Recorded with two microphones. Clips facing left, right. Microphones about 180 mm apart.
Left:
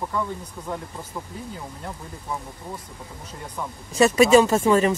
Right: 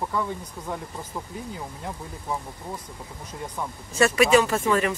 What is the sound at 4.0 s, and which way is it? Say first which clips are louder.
Speech: left 4 dB; 25° left (ahead or behind).